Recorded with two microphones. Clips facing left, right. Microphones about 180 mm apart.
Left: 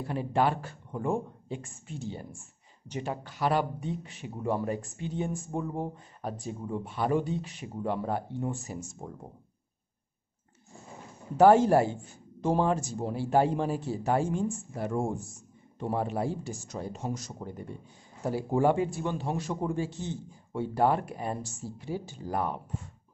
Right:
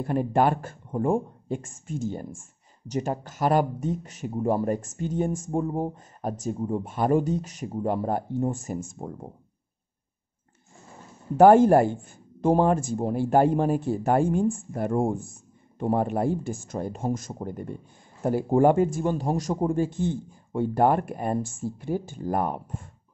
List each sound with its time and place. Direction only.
0.0 s speech: 50° right (ahead or behind)
11.3 s speech: 50° right (ahead or behind)